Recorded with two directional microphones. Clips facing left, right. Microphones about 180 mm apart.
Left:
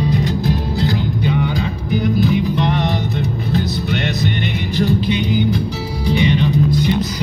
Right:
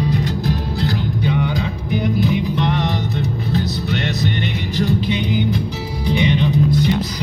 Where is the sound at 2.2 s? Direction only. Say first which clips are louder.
Left 2 dB; 45° left (ahead or behind).